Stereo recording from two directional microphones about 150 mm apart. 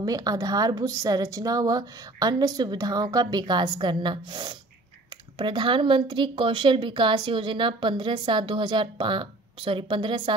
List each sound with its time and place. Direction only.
0.0 s speech: 25° right (ahead or behind)